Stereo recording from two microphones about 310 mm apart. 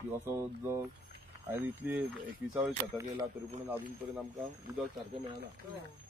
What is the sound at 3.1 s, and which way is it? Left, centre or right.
Speech, centre.